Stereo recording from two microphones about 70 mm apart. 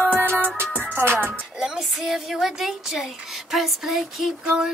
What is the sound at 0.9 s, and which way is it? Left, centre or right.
Music, right.